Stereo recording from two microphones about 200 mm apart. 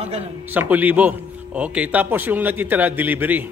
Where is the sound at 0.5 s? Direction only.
10° right (ahead or behind).